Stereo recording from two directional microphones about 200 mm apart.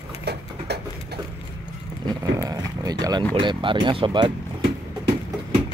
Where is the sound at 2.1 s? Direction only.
20° right (ahead or behind).